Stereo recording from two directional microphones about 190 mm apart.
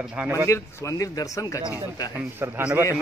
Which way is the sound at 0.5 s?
15° left (ahead or behind).